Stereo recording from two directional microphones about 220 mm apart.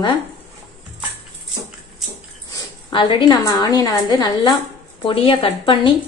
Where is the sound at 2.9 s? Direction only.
20° left (ahead or behind).